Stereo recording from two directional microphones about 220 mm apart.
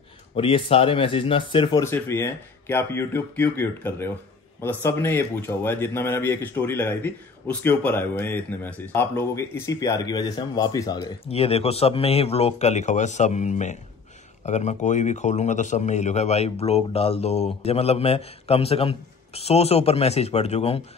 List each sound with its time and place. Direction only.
0.4 s a man's voice: 25° left (ahead or behind)